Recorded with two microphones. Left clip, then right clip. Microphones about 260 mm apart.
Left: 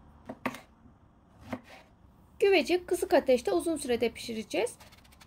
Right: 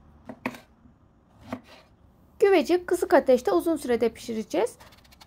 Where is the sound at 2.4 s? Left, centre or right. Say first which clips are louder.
Right 4 dB; centre.